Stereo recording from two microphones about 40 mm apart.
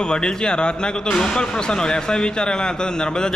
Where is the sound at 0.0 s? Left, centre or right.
Left.